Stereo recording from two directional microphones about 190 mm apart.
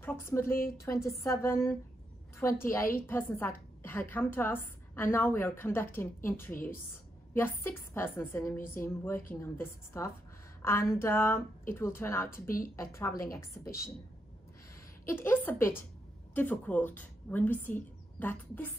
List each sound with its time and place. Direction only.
0.0 s a woman's voice: 10° left (ahead or behind)
12.3 s a woman's voice: 45° left (ahead or behind)
12.7 s a woman's voice: 15° left (ahead or behind)
15.0 s a woman's voice: 10° left (ahead or behind)